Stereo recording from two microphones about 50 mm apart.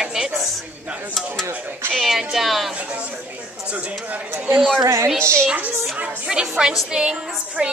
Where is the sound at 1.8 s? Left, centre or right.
Right.